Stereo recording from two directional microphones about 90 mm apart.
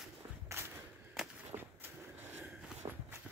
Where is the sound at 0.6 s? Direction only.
25° right (ahead or behind).